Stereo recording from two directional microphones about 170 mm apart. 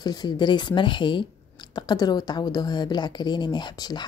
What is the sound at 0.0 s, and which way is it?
Speech, 25° left (ahead or behind).